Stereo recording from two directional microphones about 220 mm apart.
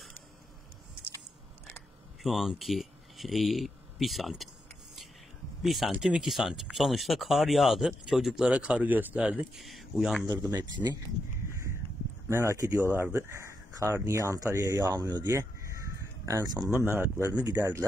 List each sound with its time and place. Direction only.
2.2 s speech: centre (ahead or behind)
5.6 s speech: centre (ahead or behind)
10.2 s speech: 15° right (ahead or behind)
12.3 s speech: 10° right (ahead or behind)
16.7 s speech: 10° left (ahead or behind)
17.0 s speech: 5° right (ahead or behind)